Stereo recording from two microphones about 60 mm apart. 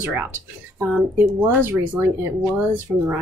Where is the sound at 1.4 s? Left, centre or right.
Right.